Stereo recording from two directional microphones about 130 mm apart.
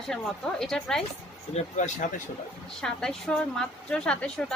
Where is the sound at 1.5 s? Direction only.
65° left (ahead or behind).